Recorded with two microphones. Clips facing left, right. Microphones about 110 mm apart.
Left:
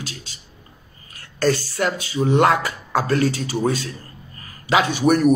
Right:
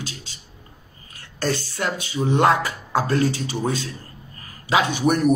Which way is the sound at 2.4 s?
25° right (ahead or behind).